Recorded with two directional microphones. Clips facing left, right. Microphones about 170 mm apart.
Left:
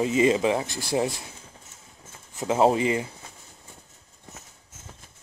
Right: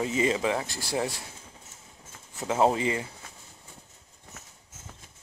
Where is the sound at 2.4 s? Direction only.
20° left (ahead or behind).